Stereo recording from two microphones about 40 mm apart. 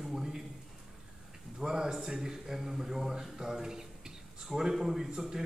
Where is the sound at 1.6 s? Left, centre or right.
Centre.